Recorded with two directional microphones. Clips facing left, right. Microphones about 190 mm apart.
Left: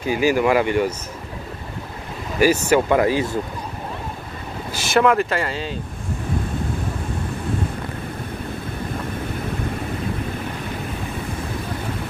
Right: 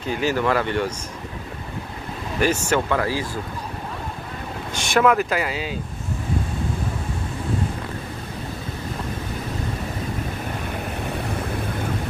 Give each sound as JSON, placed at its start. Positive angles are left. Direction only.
{"t": 0.0, "sound": "speech", "side_deg": 10}
{"t": 2.4, "sound": "speech", "side_deg": 10}
{"t": 2.9, "sound": "speech", "side_deg": 20}
{"t": 4.7, "sound": "speech", "side_deg": 0}